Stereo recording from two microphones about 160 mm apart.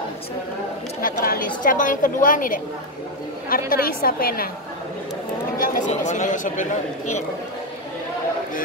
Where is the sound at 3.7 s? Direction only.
65° left (ahead or behind).